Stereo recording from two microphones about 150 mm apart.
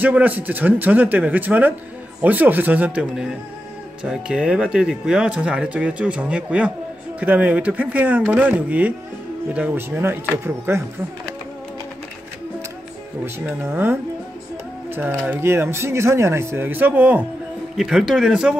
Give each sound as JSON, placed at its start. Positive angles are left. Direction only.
{"t": 0.0, "sound": "speech", "side_deg": -10}
{"t": 13.2, "sound": "speech", "side_deg": -15}